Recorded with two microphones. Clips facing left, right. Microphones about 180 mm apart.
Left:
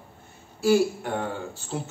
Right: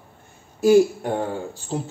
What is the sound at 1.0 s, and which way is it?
Speech, 35° right (ahead or behind).